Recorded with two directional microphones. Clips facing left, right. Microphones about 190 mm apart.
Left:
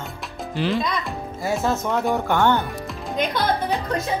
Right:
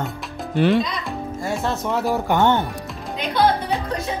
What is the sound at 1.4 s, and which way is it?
Speech, centre (ahead or behind).